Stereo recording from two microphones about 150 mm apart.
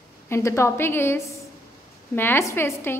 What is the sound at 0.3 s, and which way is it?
A woman's voice, 20° left (ahead or behind).